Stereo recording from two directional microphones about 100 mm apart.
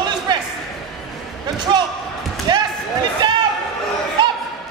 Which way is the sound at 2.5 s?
50° right (ahead or behind).